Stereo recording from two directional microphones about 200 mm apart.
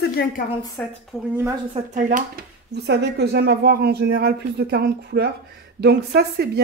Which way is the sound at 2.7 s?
55° right (ahead or behind).